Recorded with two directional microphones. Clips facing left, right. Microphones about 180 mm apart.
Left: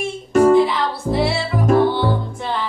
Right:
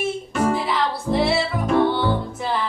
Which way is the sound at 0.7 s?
Centre (ahead or behind).